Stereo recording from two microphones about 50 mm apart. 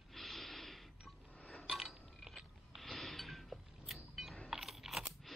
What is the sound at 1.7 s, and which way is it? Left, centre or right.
Chink, centre.